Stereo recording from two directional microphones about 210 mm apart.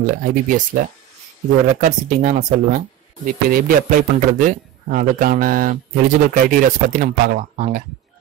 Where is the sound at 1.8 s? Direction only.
35° right (ahead or behind).